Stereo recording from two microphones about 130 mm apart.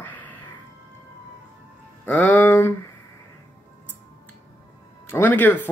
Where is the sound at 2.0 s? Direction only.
10° left (ahead or behind).